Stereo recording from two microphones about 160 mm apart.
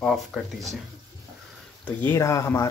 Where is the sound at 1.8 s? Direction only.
15° left (ahead or behind).